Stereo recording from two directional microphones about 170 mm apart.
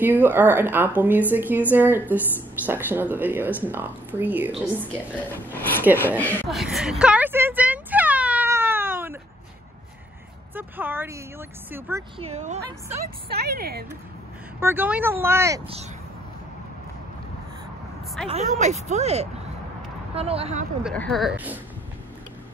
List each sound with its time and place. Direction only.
0.0 s a woman's voice: 10° right (ahead or behind)
4.9 s speech: 10° left (ahead or behind)
6.5 s a sound: centre (ahead or behind)
10.5 s a woman's voice: 10° right (ahead or behind)
12.2 s speech: 40° right (ahead or behind)
13.3 s a woman's voice: 70° right (ahead or behind)
14.6 s a woman's voice: 10° right (ahead or behind)
15.6 s speech: 35° right (ahead or behind)
18.3 s speech: 40° right (ahead or behind)
20.9 s speech: 5° left (ahead or behind)